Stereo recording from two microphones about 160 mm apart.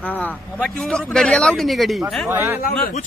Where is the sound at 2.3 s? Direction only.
15° right (ahead or behind).